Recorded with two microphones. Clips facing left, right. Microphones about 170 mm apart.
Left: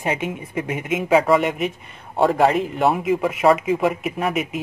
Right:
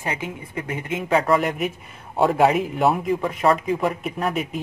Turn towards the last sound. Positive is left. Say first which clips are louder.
# left 2 dB
turn(degrees=0)  # may be behind; listen again after turning